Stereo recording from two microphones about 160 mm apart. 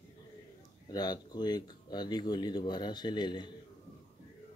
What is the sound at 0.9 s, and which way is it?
Speech, 25° left (ahead or behind).